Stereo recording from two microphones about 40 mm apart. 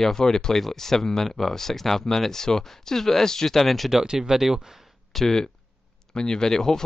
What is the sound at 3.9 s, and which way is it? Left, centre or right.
Speech, centre.